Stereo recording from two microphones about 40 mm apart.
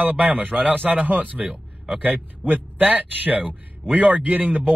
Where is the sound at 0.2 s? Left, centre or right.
Right.